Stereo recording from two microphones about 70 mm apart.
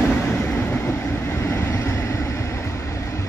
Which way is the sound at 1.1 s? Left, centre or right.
Left.